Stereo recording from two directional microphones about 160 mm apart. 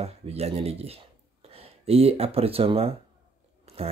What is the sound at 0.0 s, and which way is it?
Speech, 40° right (ahead or behind).